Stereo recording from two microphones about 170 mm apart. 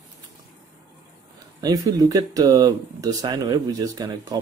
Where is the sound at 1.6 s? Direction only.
20° right (ahead or behind).